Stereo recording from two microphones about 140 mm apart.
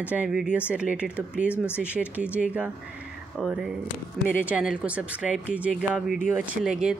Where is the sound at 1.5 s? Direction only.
15° left (ahead or behind).